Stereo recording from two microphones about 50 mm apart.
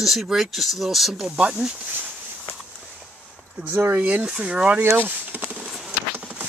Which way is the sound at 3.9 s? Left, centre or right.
Right.